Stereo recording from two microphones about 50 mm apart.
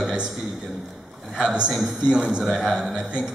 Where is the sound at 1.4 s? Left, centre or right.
Centre.